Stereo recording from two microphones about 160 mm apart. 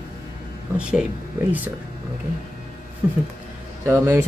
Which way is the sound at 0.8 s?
5° right (ahead or behind).